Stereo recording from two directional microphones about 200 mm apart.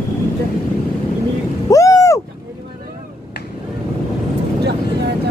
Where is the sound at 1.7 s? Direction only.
15° left (ahead or behind).